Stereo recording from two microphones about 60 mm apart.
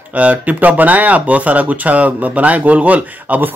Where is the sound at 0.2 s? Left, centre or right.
Right.